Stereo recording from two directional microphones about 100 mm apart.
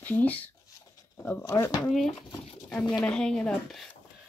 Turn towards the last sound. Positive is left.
turn(degrees=5)  # may be behind; listen again after turning